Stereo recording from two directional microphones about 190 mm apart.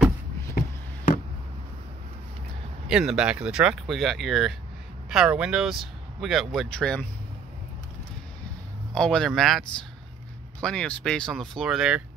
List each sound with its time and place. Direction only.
0.6 s a sound: 45° left (ahead or behind)
2.9 s speech: 5° right (ahead or behind)
8.9 s speech: 5° left (ahead or behind)